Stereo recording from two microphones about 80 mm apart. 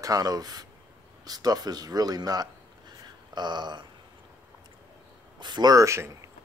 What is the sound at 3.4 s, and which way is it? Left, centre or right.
Speech, right.